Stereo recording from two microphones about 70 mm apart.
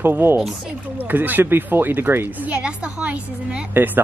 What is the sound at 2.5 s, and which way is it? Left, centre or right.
Speech, centre.